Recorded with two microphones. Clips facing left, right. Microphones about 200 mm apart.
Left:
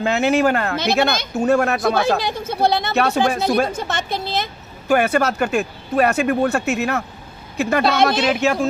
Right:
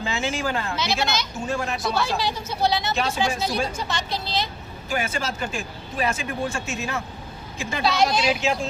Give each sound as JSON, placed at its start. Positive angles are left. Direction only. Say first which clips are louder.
{"t": 0.0, "sound": "speech", "louder": "left 10 dB", "side_deg": 65}